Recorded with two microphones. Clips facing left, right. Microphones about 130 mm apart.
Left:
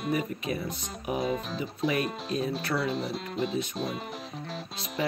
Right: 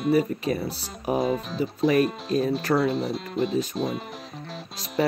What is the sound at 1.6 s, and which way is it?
Speech, 35° right (ahead or behind).